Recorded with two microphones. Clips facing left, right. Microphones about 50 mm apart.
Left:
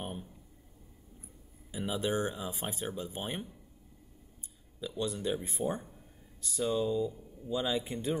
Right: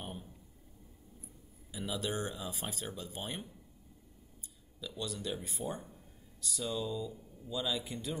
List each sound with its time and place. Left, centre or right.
1.7 s speech: left
4.7 s speech: left